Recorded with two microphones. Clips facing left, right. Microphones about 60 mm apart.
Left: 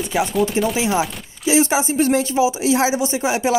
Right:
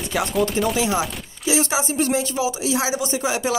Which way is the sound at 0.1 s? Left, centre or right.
Centre.